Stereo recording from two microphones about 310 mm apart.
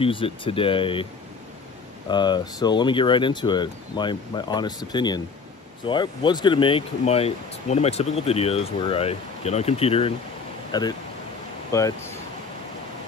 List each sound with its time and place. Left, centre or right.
0.0 s speech: centre
2.0 s speech: centre